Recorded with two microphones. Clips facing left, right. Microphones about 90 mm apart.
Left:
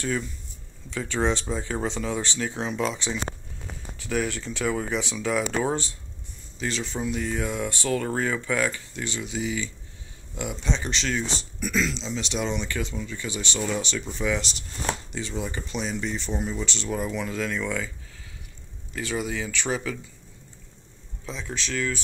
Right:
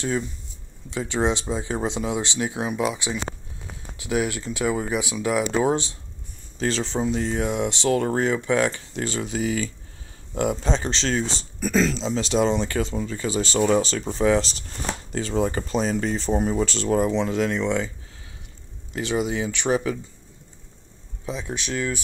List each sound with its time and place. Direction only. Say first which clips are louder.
0.8 s speech: right 2 dB; 20° right (ahead or behind)
5.5 s speech: right 4 dB; 20° right (ahead or behind)
6.6 s speech: right 5 dB; 35° right (ahead or behind)
9.0 s speech: right 5 dB; 40° right (ahead or behind)
17.0 s speech: right 7 dB; 25° right (ahead or behind)
18.9 s speech: right 5 dB; 20° right (ahead or behind)
21.3 s speech: right 3 dB; 15° right (ahead or behind)